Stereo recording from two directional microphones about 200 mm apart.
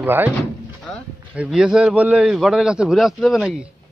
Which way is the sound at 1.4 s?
5° right (ahead or behind).